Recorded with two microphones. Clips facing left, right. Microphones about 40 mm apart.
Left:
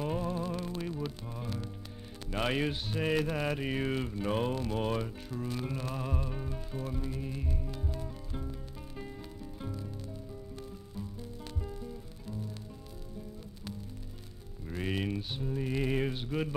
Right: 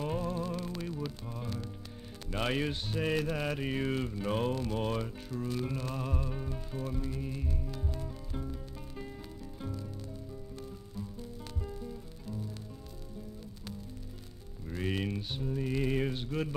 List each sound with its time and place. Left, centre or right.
0.0 s music: centre
2.3 s mantra: centre
4.6 s music: centre
9.6 s music: centre
11.6 s music: centre
14.7 s mantra: centre